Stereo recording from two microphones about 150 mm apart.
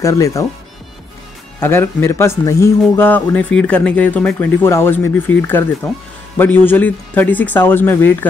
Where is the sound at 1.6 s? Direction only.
15° left (ahead or behind).